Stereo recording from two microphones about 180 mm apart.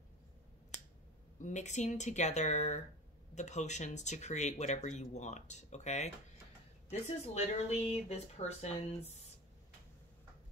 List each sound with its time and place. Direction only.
1.4 s speech: 40° left (ahead or behind)